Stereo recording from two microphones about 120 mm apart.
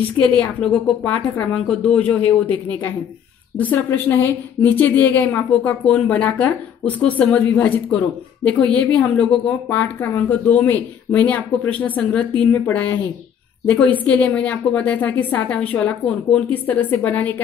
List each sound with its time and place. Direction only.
0.4 s speech: 10° left (ahead or behind)